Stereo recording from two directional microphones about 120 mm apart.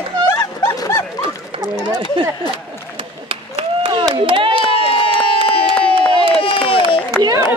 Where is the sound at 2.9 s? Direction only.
50° right (ahead or behind).